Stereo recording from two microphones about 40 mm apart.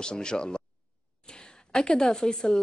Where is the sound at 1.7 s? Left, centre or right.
Centre.